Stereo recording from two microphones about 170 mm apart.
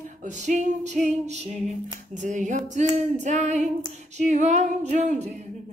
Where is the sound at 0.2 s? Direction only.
45° right (ahead or behind).